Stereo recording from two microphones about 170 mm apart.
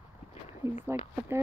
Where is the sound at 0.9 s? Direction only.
15° right (ahead or behind).